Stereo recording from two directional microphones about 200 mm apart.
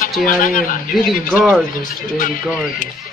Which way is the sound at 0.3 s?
40° left (ahead or behind).